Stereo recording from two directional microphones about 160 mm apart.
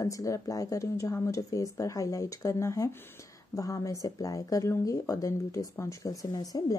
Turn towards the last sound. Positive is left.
turn(degrees=25)  # may be behind; listen again after turning